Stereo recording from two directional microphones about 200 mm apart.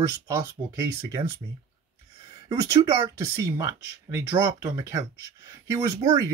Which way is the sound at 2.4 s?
15° right (ahead or behind).